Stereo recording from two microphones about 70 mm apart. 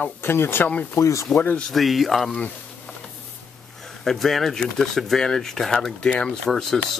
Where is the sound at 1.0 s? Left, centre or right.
Left.